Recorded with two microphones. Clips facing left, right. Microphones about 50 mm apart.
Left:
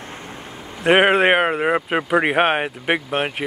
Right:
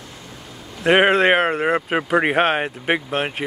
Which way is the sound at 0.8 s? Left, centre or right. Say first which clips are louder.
Even; centre.